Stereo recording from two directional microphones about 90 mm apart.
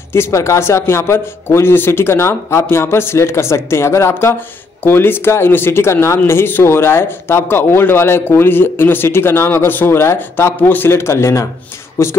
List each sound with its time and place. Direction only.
0.1 s speech: 30° left (ahead or behind)